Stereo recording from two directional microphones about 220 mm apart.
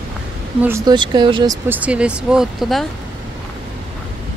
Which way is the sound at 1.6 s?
5° right (ahead or behind).